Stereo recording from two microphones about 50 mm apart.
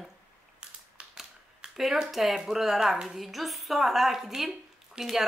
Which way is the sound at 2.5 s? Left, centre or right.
Centre.